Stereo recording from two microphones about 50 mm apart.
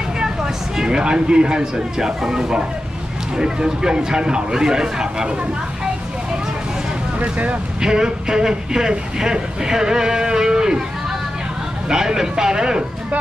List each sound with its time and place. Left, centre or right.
0.2 s speech: centre
7.2 s speech: right
7.8 s speech: centre